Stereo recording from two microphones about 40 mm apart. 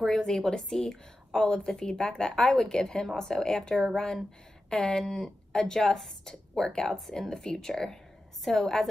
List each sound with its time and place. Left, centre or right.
0.0 s a woman's voice: centre